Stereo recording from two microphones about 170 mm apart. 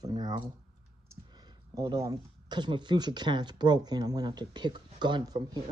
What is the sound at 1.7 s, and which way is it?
Speech, 20° right (ahead or behind).